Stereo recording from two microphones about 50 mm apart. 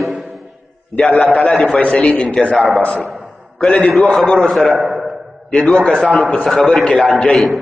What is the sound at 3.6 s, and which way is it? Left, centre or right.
A man's voice, centre.